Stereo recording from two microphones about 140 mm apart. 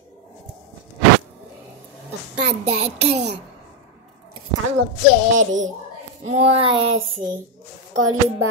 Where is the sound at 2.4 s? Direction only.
50° right (ahead or behind).